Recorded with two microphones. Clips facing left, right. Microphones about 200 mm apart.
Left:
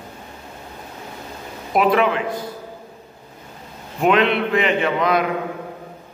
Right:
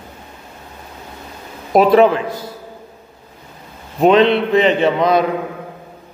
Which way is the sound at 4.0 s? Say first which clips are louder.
Right 6 dB; 30° right (ahead or behind).